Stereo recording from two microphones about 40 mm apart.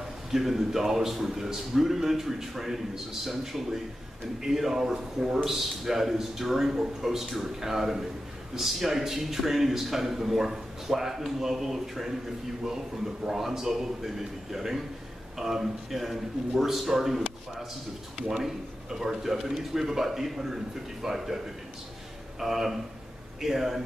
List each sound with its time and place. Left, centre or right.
0.3 s a man's voice: centre
18.3 s a man's voice: centre
22.4 s a man's voice: centre